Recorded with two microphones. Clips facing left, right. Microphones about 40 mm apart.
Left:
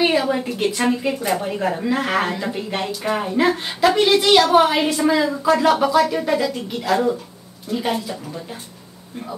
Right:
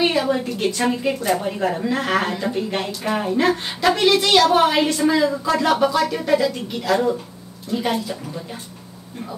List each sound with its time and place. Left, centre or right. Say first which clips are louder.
0.0 s a woman's voice: left 1 dB; centre